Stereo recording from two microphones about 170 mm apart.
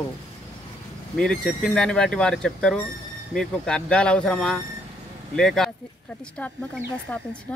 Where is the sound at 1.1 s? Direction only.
5° left (ahead or behind).